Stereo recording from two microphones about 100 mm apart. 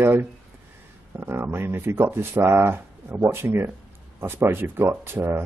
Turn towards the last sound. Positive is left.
turn(degrees=-25)  # may be behind; listen again after turning